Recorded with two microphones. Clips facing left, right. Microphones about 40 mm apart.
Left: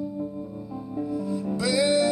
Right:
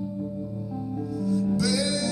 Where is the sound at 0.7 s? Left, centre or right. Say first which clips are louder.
Left 3 dB; left.